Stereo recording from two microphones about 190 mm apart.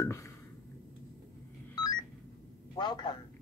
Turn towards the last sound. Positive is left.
turn(degrees=20)  # may be behind; listen again after turning